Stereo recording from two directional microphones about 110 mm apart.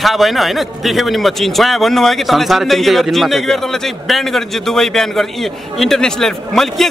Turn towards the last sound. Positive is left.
turn(degrees=0)  # may be behind; listen again after turning